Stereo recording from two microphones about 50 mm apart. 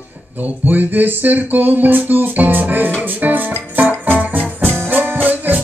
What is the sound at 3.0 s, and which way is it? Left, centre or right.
Music, right.